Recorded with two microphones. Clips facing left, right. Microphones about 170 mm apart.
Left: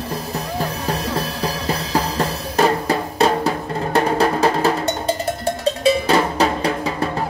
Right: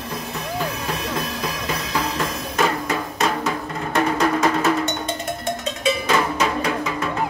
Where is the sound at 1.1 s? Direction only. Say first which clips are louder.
Left 3 dB; 35° left (ahead or behind).